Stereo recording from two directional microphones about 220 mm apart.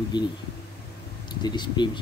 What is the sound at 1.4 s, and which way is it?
Speech, 20° left (ahead or behind).